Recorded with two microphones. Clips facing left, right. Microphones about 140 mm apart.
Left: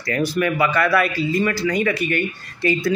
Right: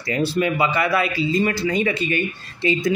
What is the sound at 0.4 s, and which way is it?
Speech, 20° right (ahead or behind).